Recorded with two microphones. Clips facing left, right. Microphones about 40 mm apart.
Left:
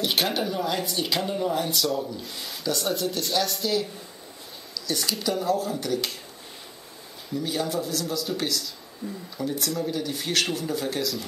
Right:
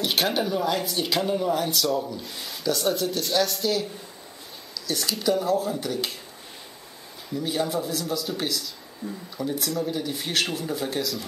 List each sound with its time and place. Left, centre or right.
0.0 s speech: centre
7.3 s speech: centre